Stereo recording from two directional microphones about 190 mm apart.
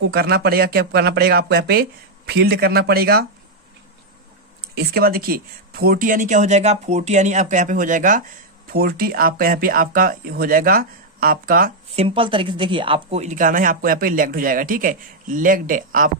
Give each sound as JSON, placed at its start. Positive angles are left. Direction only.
{"t": 0.0, "sound": "speech", "side_deg": -55}
{"t": 4.7, "sound": "speech", "side_deg": -55}
{"t": 11.9, "sound": "speech", "side_deg": -30}